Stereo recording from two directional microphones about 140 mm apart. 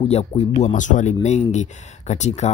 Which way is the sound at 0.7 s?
60° left (ahead or behind).